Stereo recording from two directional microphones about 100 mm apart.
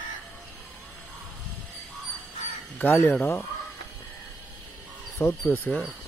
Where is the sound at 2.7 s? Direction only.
20° left (ahead or behind).